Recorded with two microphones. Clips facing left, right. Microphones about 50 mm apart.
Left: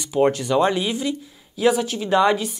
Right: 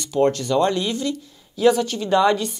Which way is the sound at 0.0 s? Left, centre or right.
Centre.